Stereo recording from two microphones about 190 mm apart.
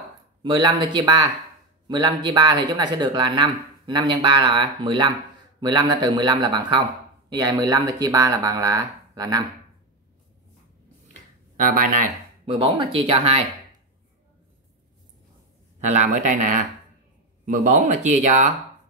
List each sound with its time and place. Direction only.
0.4 s speech: 25° right (ahead or behind)
11.5 s speech: 45° right (ahead or behind)
12.4 s speech: 30° right (ahead or behind)
15.9 s speech: 40° right (ahead or behind)